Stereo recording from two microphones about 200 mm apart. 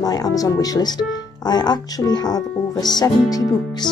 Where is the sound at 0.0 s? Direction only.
20° left (ahead or behind).